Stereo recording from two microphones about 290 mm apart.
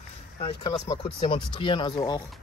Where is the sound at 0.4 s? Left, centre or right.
Centre.